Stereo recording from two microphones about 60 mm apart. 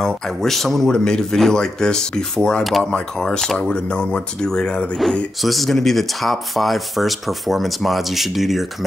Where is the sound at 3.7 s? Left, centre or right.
Centre.